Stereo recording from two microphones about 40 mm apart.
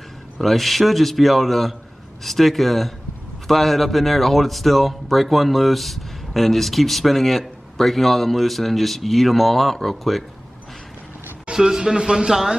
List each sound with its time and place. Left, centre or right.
0.4 s speech: centre
11.5 s speech: centre